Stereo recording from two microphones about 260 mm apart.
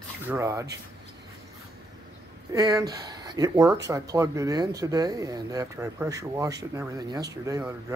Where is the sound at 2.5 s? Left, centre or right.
Centre.